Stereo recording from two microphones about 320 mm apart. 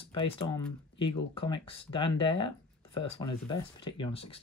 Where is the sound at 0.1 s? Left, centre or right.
Centre.